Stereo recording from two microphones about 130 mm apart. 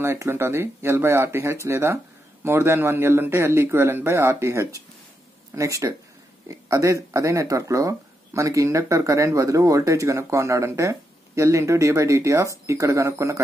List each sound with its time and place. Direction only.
0.0 s speech: 20° right (ahead or behind)